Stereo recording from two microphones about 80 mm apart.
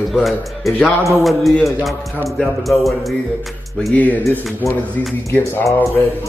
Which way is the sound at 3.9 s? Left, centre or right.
Left.